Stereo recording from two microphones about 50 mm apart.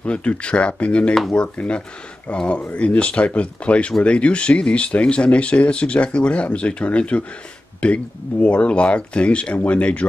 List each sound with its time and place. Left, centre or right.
0.0 s speech: left